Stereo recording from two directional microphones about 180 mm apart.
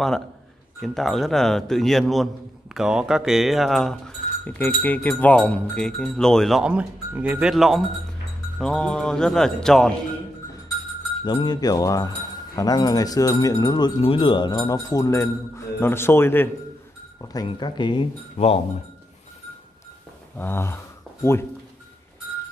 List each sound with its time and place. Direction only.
0.7 s speech: centre (ahead or behind)
11.2 s speech: 25° left (ahead or behind)
17.3 s speech: 25° left (ahead or behind)
20.3 s speech: 10° left (ahead or behind)